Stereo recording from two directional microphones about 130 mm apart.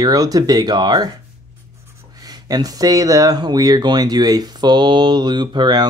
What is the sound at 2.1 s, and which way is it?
Speech, 30° right (ahead or behind).